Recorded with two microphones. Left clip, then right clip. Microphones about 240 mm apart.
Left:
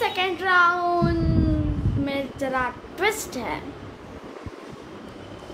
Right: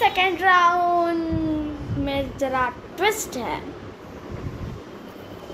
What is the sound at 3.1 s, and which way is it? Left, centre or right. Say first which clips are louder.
Speech: right 3 dB; left.